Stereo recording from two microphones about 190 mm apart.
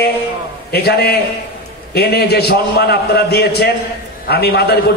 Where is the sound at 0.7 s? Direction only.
55° left (ahead or behind).